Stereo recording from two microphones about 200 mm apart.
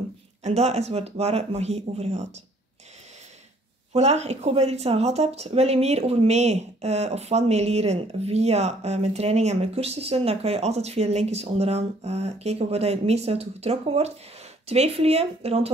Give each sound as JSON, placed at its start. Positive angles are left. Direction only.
{"t": 0.4, "sound": "speech", "side_deg": -35}
{"t": 3.9, "sound": "speech", "side_deg": -30}